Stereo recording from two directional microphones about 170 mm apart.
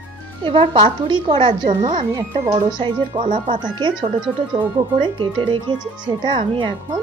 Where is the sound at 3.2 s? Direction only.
45° right (ahead or behind).